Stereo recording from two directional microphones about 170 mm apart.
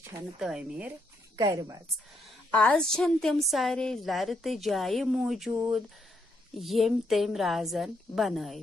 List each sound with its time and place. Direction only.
0.4 s a woman's voice: 5° right (ahead or behind)
1.3 s a woman's voice: 20° right (ahead or behind)
2.5 s a woman's voice: 5° left (ahead or behind)